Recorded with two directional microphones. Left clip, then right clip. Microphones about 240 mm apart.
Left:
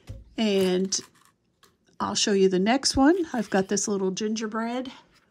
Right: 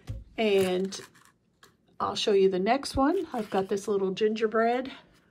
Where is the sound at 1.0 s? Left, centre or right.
Centre.